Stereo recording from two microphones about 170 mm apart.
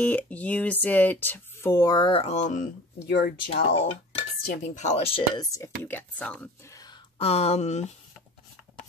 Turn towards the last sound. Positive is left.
turn(degrees=40)  # may be behind; listen again after turning